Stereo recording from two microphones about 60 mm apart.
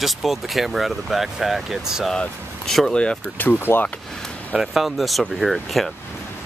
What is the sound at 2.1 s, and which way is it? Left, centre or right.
Speech, centre.